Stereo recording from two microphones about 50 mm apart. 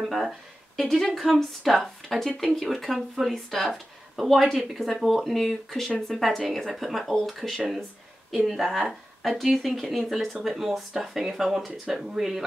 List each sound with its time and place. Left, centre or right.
0.7 s speech: centre
4.2 s speech: centre